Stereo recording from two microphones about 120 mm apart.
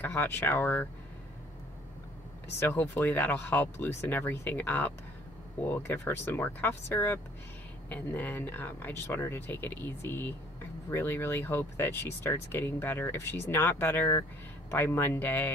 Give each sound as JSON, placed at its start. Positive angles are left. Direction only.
{"t": 0.0, "sound": "speech", "side_deg": 15}
{"t": 2.6, "sound": "speech", "side_deg": 20}